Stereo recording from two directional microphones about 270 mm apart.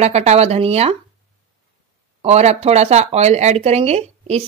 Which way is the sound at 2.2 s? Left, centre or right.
Right.